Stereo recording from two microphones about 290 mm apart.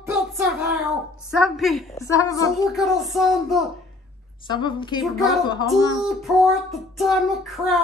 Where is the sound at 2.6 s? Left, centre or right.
Centre.